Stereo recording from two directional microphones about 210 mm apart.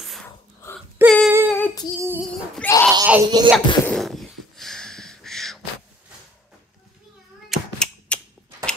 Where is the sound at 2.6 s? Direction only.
10° left (ahead or behind).